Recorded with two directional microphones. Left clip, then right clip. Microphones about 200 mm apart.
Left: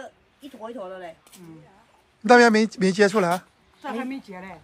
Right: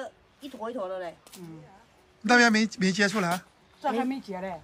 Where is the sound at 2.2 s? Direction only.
Centre (ahead or behind).